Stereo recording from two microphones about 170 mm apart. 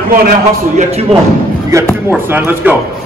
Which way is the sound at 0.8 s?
35° right (ahead or behind).